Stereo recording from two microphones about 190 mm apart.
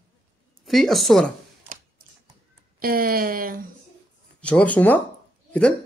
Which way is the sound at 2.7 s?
50° right (ahead or behind).